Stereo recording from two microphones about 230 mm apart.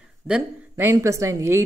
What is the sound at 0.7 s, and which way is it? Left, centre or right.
Speech, centre.